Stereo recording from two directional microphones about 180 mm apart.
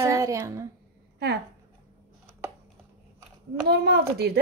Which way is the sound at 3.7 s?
65° right (ahead or behind).